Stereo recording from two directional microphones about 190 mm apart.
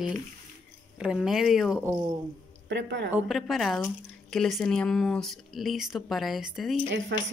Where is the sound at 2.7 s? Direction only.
65° right (ahead or behind).